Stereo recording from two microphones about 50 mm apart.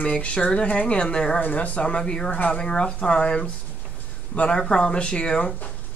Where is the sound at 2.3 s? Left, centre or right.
Left.